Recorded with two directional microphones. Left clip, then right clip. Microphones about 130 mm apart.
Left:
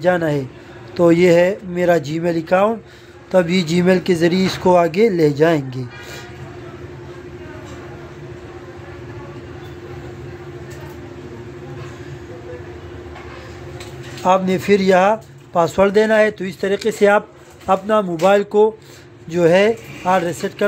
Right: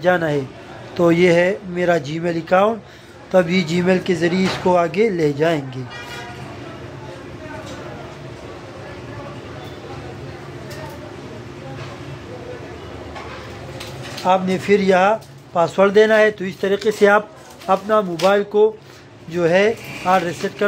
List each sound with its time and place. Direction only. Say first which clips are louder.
0.0 s speech: even; 30° left (ahead or behind)
14.2 s speech: left 2 dB; 40° left (ahead or behind)